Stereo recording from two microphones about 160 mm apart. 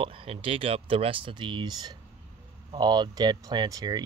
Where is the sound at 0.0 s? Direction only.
35° right (ahead or behind).